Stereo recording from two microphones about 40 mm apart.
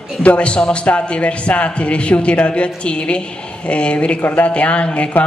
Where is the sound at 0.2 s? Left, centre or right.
Left.